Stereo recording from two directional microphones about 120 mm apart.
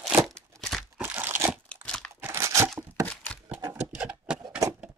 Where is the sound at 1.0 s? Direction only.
15° right (ahead or behind).